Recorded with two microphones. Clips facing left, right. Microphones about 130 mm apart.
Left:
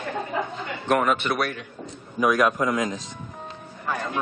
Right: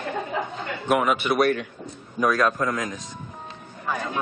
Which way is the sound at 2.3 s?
15° left (ahead or behind).